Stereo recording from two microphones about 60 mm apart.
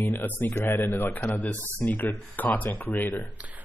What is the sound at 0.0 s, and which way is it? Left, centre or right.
A man's voice, left.